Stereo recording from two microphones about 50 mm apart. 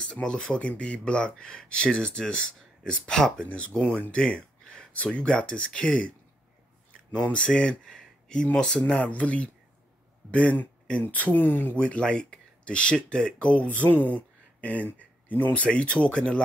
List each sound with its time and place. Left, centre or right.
0.0 s speech: centre
3.4 s speech: left
7.2 s speech: left
9.0 s speech: left
11.7 s speech: left
13.7 s speech: left